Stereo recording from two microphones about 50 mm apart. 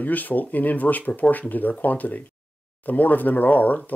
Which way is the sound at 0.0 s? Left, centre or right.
Left.